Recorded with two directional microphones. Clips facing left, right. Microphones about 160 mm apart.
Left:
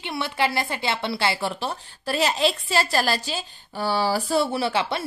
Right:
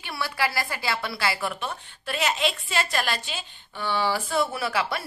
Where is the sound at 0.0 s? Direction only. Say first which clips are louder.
Left 3 dB; 20° left (ahead or behind).